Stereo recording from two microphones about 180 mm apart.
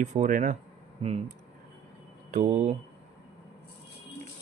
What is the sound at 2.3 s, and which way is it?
Speech, 40° right (ahead or behind).